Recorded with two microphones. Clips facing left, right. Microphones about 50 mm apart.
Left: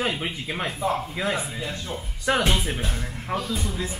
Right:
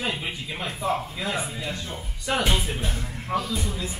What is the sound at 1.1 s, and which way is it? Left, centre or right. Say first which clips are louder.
A man's voice: left 2 dB; left.